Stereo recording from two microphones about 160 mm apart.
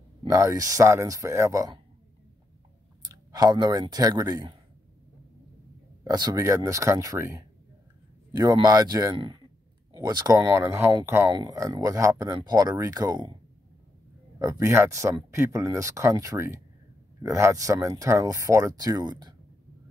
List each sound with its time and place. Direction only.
0.2 s speech: 20° right (ahead or behind)
3.0 s speech: 25° right (ahead or behind)
6.0 s speech: 25° right (ahead or behind)
14.4 s speech: 20° right (ahead or behind)